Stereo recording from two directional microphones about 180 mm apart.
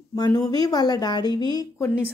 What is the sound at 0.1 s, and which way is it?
Speech, 20° left (ahead or behind).